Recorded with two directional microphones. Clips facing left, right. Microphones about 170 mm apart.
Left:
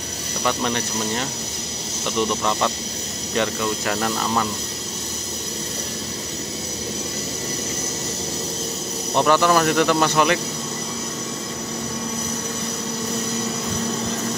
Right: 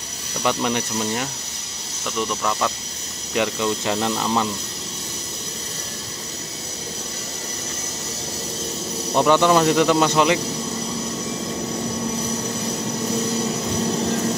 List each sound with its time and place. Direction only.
0.4 s speech: 10° right (ahead or behind)
2.1 s speech: centre (ahead or behind)
3.3 s speech: 20° right (ahead or behind)
9.1 s speech: 15° right (ahead or behind)